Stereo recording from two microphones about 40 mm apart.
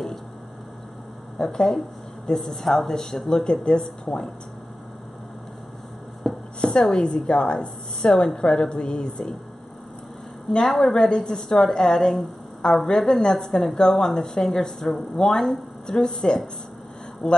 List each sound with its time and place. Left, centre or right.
1.4 s a woman's voice: centre
6.2 s chopping: centre
6.6 s a woman's voice: left
10.6 s a woman's voice: centre